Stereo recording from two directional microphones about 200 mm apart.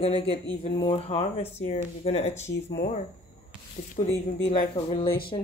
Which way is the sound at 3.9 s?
30° left (ahead or behind).